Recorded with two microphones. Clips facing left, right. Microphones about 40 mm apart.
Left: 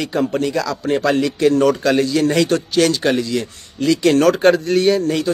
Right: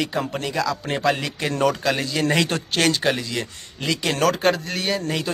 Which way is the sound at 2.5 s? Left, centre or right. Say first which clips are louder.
Left 8 dB; right.